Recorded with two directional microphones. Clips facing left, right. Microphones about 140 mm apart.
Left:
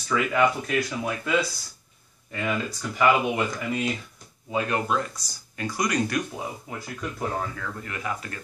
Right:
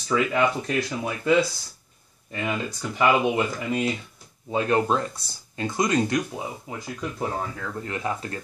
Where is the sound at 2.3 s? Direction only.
25° right (ahead or behind).